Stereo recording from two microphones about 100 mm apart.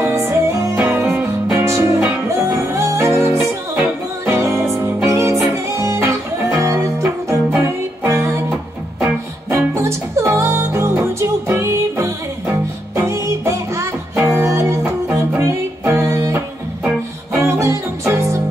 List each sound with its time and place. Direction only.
0.0 s music: 25° right (ahead or behind)
3.3 s music: 10° right (ahead or behind)
4.3 s music: 30° right (ahead or behind)
9.8 s music: 30° right (ahead or behind)
14.8 s music: 15° right (ahead or behind)
15.9 s music: 30° right (ahead or behind)